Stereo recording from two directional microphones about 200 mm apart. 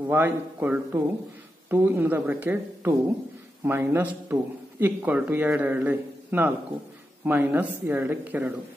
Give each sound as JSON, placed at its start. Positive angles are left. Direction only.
{"t": 0.0, "sound": "speech", "side_deg": -10}